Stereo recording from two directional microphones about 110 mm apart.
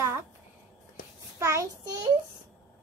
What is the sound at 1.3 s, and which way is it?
Speech, 25° right (ahead or behind).